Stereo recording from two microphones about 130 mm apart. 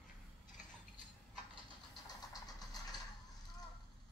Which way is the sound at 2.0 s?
30° left (ahead or behind).